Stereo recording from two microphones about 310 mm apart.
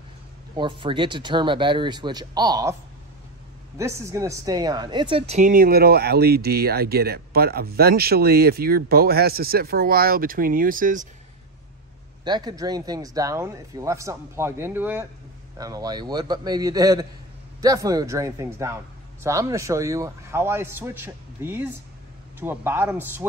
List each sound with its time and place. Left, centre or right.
0.6 s speech: centre
3.7 s a woman's voice: centre; by 11.1 s right
12.3 s speech: centre